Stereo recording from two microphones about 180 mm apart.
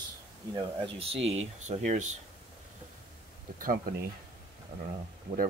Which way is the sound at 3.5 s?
50° right (ahead or behind).